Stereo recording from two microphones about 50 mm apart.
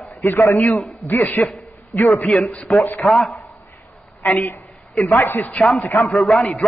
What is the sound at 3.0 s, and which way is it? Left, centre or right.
Speech, centre.